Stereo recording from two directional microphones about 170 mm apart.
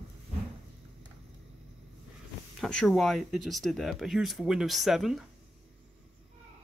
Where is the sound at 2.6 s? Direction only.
Centre (ahead or behind).